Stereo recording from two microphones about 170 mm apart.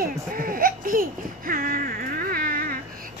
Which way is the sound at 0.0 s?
55° right (ahead or behind).